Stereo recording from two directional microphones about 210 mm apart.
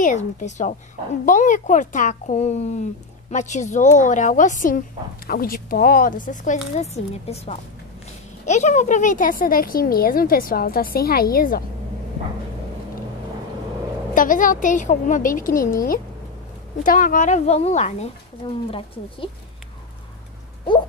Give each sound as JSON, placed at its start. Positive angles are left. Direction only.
{"t": 0.0, "sound": "a child's voice", "side_deg": 35}
{"t": 14.1, "sound": "a child's voice", "side_deg": 40}